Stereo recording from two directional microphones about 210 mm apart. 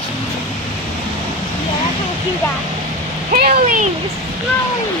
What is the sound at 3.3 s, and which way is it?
Speech, 45° right (ahead or behind).